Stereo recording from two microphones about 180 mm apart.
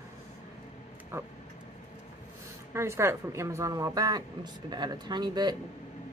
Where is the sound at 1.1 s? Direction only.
10° right (ahead or behind).